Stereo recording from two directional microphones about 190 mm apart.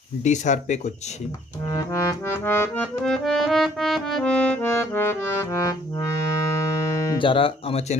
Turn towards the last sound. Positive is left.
turn(degrees=30)  # may be behind; listen again after turning